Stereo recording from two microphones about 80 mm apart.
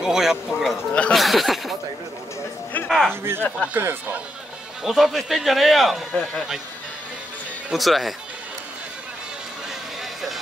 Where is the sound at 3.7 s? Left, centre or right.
Right.